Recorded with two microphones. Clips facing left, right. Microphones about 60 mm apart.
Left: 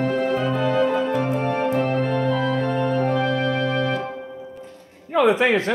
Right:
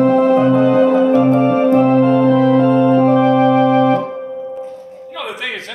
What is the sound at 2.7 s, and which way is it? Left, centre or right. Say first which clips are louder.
Music: right 10 dB; right.